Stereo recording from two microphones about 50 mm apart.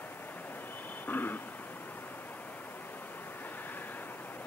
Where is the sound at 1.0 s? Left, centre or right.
Left.